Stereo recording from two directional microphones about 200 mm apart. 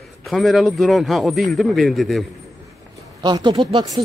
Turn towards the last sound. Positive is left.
turn(degrees=-25)  # may be behind; listen again after turning